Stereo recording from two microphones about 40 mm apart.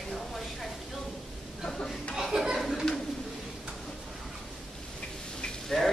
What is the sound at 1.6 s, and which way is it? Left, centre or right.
Chuckle, centre.